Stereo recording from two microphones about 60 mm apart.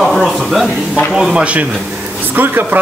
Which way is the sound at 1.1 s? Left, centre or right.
Centre.